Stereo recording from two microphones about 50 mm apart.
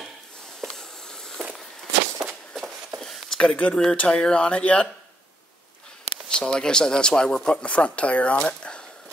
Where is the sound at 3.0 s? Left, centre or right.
Centre.